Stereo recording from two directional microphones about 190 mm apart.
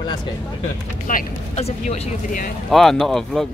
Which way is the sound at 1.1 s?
45° left (ahead or behind).